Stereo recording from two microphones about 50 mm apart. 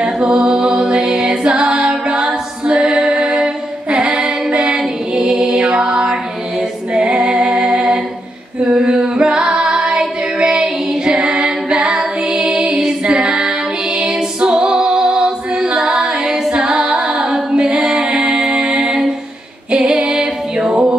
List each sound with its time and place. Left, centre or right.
0.0 s music: right
1.1 s a capella: centre
2.9 s music: centre
3.4 s a capella: centre
5.3 s music: centre
6.9 s female singing: centre
9.8 s music: centre
11.1 s a capella: right
11.7 s music: centre
19.8 s female singing: right